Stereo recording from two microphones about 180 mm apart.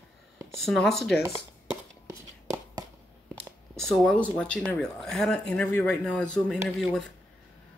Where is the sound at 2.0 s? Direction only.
15° right (ahead or behind).